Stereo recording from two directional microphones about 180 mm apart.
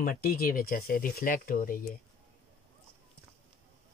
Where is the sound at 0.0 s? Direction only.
55° left (ahead or behind).